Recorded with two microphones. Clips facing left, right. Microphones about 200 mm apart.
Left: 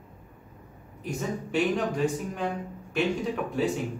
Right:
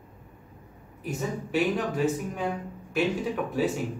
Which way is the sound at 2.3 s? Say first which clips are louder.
Even; 5° right (ahead or behind).